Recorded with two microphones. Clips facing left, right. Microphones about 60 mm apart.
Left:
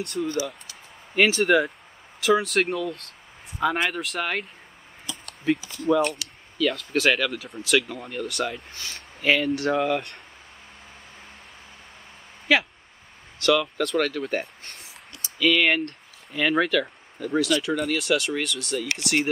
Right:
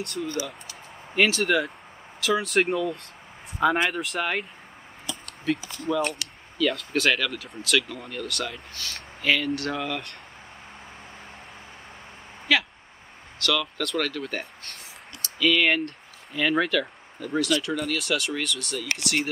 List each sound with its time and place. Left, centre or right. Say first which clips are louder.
0.2 s speech: left 4 dB; centre
13.4 s speech: left 5 dB; centre
13.8 s speech: left 3 dB; centre